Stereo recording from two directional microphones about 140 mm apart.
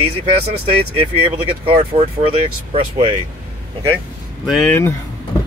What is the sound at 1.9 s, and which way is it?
Speech, 50° right (ahead or behind).